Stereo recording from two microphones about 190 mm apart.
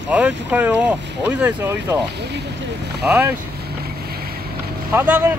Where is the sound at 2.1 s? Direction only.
60° right (ahead or behind).